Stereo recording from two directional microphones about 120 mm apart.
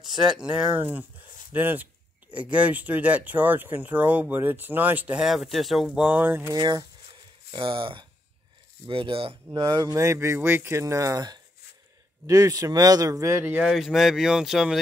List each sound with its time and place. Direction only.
0.0 s speech: 5° right (ahead or behind)
6.5 s speech: 35° right (ahead or behind)
9.5 s speech: 35° right (ahead or behind); by 13.7 s 15° right (ahead or behind)
13.7 s speech: centre (ahead or behind)